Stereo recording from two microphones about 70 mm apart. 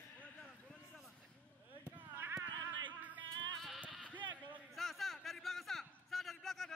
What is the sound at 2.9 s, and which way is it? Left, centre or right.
Music, right.